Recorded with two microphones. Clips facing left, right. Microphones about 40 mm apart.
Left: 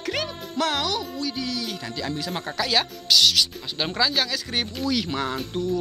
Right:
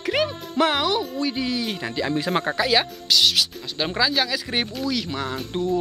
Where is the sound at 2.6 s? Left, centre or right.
Centre.